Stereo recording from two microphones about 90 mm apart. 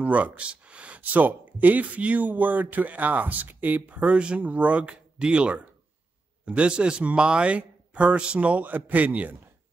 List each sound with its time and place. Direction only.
0.0 s speech: 15° right (ahead or behind)